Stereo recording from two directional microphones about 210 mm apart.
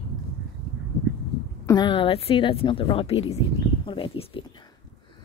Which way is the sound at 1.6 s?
20° left (ahead or behind).